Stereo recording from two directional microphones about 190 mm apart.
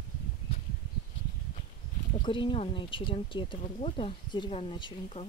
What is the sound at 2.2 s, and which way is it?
Speech, 25° left (ahead or behind).